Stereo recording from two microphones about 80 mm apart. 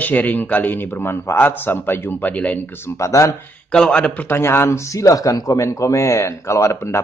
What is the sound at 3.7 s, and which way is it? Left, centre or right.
Speech, centre.